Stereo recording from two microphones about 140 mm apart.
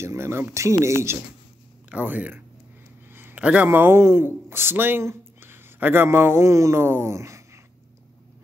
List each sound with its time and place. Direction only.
0.0 s speech: 20° right (ahead or behind)